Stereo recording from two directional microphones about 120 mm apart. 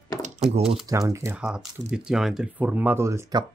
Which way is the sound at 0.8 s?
25° right (ahead or behind).